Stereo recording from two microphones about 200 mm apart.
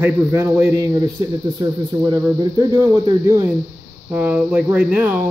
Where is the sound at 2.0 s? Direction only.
20° right (ahead or behind).